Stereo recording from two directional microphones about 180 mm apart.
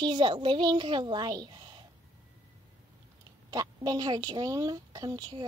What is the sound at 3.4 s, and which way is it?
Speech, 20° right (ahead or behind).